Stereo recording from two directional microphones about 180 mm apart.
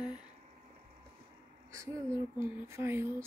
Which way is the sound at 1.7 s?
15° right (ahead or behind).